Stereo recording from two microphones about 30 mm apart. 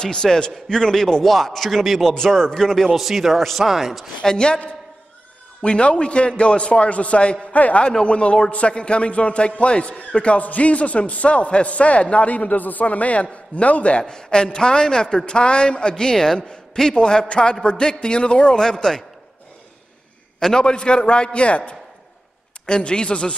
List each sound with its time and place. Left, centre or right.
0.0 s speech: left
1.2 s a man's voice: centre
2.1 s a man's voice: centre
2.9 s speech: centre
5.6 s a man's voice: left
7.5 s a man's voice: left
8.0 s a man's voice: left
14.0 s a man's voice: left
18.6 s speech: centre
20.3 s a man's voice: centre
20.6 s a man's voice: left
22.7 s a man's voice: left